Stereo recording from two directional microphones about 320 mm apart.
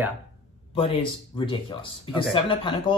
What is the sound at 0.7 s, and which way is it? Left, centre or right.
Speech, centre.